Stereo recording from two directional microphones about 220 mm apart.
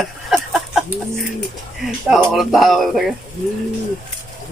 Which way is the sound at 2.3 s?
Centre (ahead or behind).